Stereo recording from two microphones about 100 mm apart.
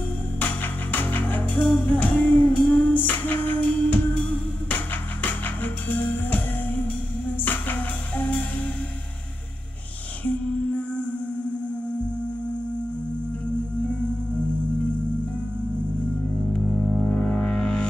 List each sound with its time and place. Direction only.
0.4 s music: 20° left (ahead or behind)
16.5 s music: 10° left (ahead or behind)